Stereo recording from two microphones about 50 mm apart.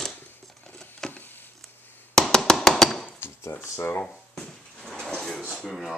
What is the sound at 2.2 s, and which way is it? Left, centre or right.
Tap, centre.